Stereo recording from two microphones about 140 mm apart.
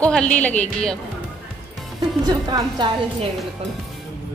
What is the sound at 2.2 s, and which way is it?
Speech, 30° right (ahead or behind).